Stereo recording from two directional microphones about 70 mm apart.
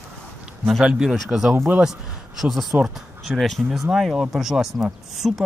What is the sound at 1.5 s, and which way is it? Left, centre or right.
Speech, right.